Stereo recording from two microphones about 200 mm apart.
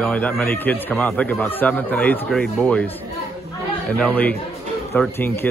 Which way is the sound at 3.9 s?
5° left (ahead or behind).